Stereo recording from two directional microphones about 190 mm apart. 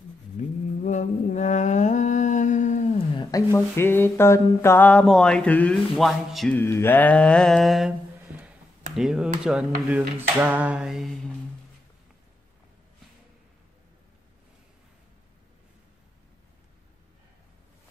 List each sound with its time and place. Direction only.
0.4 s mantra: 40° left (ahead or behind)
3.2 s speech: 20° left (ahead or behind); by 7.9 s centre (ahead or behind)
8.9 s a sound: 5° right (ahead or behind)